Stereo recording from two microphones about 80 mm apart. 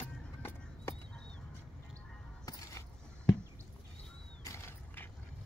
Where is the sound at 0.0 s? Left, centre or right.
Left.